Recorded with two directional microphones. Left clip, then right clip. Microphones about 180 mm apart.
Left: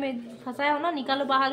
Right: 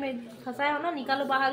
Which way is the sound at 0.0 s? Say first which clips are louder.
Left 2 dB; 20° left (ahead or behind).